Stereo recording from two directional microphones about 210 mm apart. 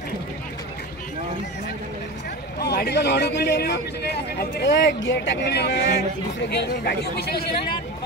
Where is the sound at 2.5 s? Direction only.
50° left (ahead or behind).